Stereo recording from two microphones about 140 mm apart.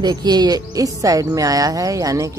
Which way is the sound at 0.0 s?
30° right (ahead or behind).